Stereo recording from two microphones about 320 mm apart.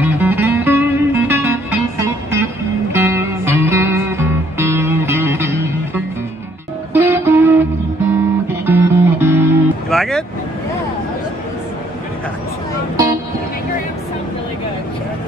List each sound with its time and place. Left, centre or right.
0.0 s music: centre
2.9 s music: centre